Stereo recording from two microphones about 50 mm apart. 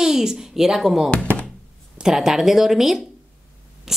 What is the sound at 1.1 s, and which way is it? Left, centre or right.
Thunk, left.